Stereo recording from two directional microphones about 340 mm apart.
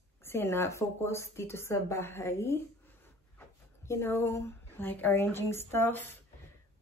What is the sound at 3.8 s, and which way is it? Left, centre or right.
Speech, centre.